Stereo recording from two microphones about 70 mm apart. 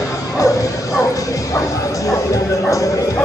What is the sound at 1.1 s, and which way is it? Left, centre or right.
Bow-wow, left.